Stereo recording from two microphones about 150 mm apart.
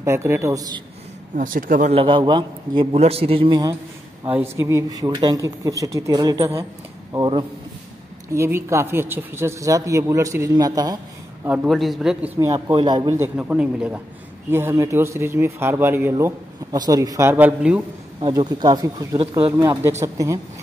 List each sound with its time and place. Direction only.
0.0 s speech: 20° right (ahead or behind)
1.3 s speech: 65° right (ahead or behind)
1.9 s a man's voice: 35° right (ahead or behind)
4.3 s speech: 15° right (ahead or behind)
8.3 s speech: 15° right (ahead or behind)
11.6 s a man's voice: centre (ahead or behind)
12.7 s a man's voice: 30° right (ahead or behind)
13.2 s speech: 10° right (ahead or behind)
18.2 s speech: 30° right (ahead or behind)